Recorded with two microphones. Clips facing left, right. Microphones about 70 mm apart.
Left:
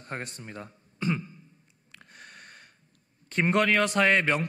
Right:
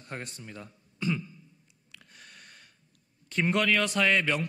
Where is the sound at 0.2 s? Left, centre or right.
Left.